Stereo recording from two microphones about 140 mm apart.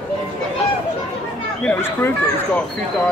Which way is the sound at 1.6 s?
15° left (ahead or behind).